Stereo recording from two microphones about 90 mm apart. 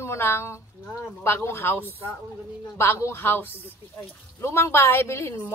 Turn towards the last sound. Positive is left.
turn(degrees=30)  # may be behind; listen again after turning